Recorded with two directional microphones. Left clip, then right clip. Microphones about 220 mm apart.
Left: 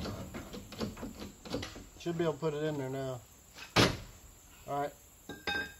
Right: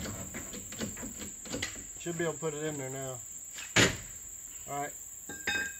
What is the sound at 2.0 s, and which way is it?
Cricket, 55° left (ahead or behind).